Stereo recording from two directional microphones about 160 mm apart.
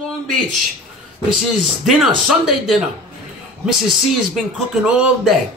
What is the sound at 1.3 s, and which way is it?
Speech, centre (ahead or behind).